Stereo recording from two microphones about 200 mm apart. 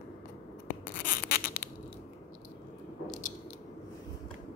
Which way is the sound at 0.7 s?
45° left (ahead or behind).